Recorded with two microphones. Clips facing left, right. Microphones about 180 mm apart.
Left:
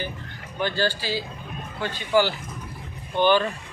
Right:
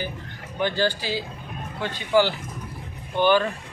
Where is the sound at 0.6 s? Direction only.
15° right (ahead or behind).